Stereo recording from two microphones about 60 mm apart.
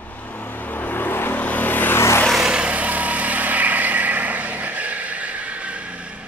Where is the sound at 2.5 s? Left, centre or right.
Centre.